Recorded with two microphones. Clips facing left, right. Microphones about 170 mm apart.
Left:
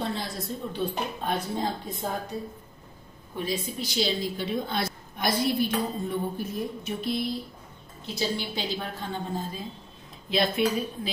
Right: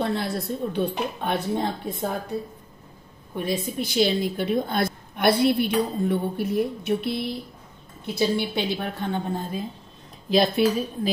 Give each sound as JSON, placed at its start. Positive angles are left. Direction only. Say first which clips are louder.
{"t": 0.0, "sound": "a woman's voice", "louder": "right 6 dB", "side_deg": -60}
{"t": 3.3, "sound": "a woman's voice", "louder": "right 4 dB", "side_deg": -55}
{"t": 8.4, "sound": "a woman's voice", "louder": "right 6 dB", "side_deg": -60}
{"t": 10.3, "sound": "a woman's voice", "louder": "right 5 dB", "side_deg": -40}